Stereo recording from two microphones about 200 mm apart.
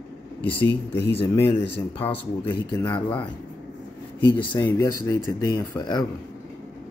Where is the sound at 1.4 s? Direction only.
25° left (ahead or behind).